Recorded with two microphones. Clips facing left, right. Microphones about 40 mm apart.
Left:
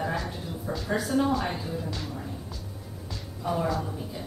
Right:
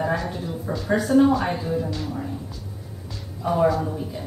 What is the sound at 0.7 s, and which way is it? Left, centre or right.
A woman's voice, centre.